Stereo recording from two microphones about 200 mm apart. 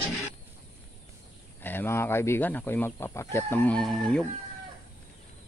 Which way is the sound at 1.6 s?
10° left (ahead or behind).